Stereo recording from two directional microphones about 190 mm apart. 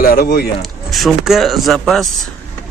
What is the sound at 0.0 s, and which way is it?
Speech, 50° left (ahead or behind).